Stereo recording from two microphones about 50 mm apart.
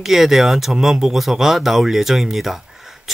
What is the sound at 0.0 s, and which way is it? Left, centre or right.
Speech, centre.